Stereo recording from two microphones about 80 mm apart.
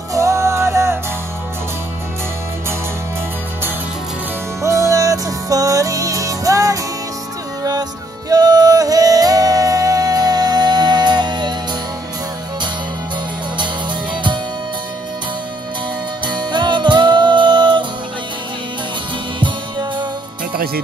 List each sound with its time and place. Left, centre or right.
0.1 s music: right
4.6 s music: right
8.3 s music: right
16.3 s music: right
19.4 s music: right